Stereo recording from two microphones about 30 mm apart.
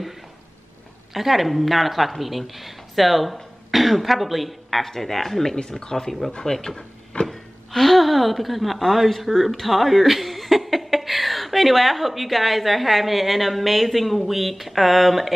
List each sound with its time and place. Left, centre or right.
1.1 s speech: centre
5.6 s speech: left; by 15.3 s centre